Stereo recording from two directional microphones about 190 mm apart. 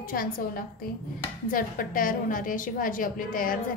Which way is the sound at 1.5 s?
45° left (ahead or behind).